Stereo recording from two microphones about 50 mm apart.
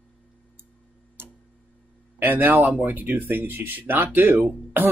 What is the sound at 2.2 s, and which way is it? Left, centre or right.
Speech, right.